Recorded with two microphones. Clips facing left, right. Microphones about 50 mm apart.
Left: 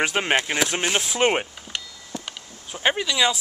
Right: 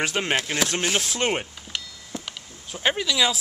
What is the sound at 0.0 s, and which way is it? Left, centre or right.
Speech, centre.